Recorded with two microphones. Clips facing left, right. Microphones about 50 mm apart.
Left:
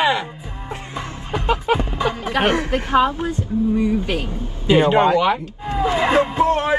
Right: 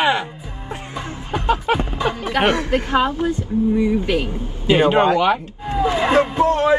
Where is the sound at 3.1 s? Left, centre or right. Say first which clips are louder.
Right 3 dB; left.